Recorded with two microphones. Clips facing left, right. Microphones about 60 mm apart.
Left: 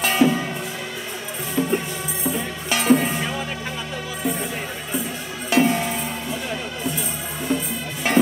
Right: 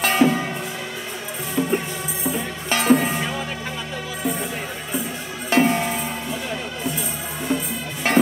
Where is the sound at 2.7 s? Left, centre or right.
Right.